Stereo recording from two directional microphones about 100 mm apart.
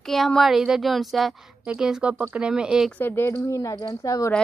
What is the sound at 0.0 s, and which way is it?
Speech, 5° left (ahead or behind).